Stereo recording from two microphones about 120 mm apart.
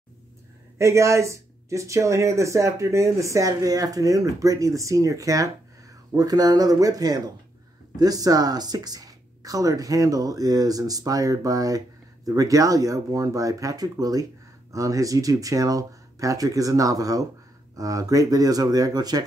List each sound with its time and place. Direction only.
0.7 s speech: 25° right (ahead or behind)